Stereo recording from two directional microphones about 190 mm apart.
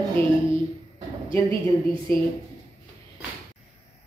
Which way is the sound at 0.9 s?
25° right (ahead or behind).